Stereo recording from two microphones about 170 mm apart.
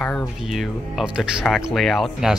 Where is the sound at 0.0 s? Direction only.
5° left (ahead or behind).